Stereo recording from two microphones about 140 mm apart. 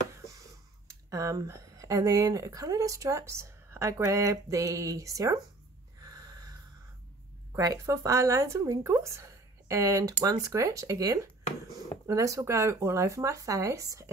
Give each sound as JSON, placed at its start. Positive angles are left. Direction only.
{"t": 0.1, "sound": "speech", "side_deg": -20}
{"t": 5.9, "sound": "a sound", "side_deg": -30}
{"t": 7.5, "sound": "speech", "side_deg": -25}